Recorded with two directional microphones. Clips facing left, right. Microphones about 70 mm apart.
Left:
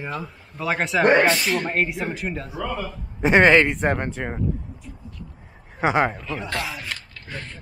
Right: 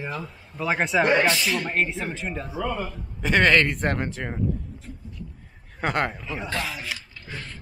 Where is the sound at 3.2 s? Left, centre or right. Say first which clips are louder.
Left 4 dB; left.